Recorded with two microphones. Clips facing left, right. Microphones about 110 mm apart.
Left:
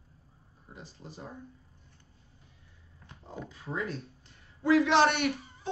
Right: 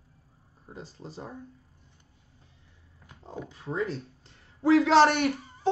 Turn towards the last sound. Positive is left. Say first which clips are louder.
# right 5 dB
turn(degrees=-40)  # may be behind; listen again after turning